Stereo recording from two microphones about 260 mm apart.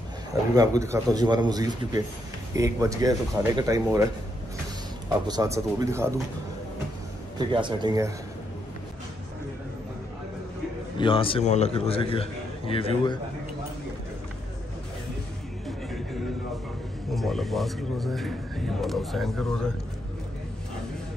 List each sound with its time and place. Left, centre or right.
0.6 s speech: centre
5.3 s speech: centre
7.3 s speech: centre
11.0 s a man's voice: centre
17.1 s speech: centre